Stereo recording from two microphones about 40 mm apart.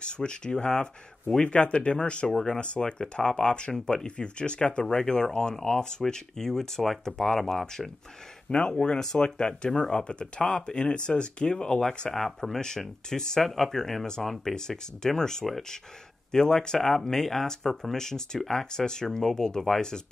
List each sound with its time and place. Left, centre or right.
0.0 s speech: left
8.5 s speech: left
12.1 s speech: centre
12.4 s speech: centre